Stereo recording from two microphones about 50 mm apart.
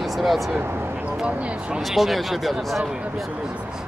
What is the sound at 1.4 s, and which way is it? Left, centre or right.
Speech, right.